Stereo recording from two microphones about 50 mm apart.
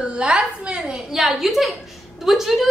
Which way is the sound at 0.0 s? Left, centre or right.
Right.